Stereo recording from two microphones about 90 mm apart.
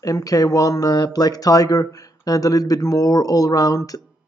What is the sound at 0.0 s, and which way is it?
Speech, 40° left (ahead or behind).